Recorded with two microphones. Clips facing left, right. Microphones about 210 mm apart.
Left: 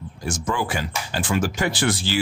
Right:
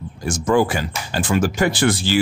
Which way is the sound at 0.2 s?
45° right (ahead or behind).